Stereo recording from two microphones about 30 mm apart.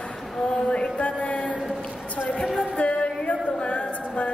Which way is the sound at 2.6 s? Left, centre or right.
Left.